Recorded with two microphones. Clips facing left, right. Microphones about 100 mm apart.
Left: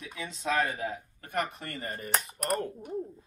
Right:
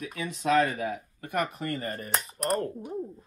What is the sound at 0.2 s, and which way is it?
Speech, 65° right (ahead or behind).